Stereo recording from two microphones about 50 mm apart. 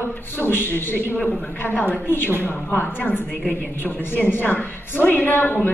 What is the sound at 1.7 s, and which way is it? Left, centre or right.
Speech, left.